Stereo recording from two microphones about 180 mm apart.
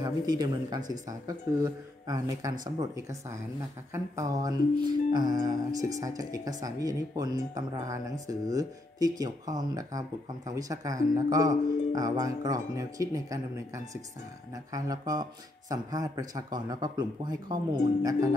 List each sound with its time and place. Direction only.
0.0 s speech: 20° right (ahead or behind)
14.5 s speech: 20° right (ahead or behind)